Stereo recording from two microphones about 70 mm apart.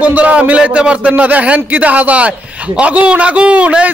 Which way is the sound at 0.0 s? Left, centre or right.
Right.